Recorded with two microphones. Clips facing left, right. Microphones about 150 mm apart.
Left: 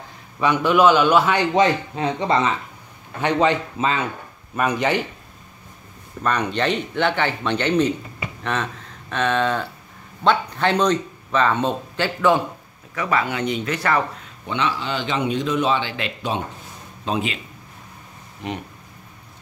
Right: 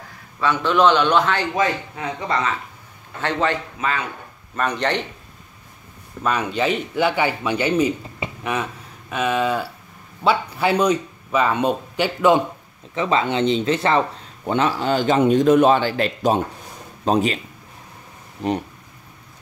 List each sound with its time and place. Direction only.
0.4 s a man's voice: 15° left (ahead or behind)
1.5 s a man's voice: 25° left (ahead or behind)
4.6 s a man's voice: 10° left (ahead or behind)
6.2 s speech: 5° right (ahead or behind)
9.1 s speech: 10° right (ahead or behind); by 14.0 s 25° right (ahead or behind)
14.4 s a man's voice: 45° right (ahead or behind)
18.4 s speech: 40° right (ahead or behind)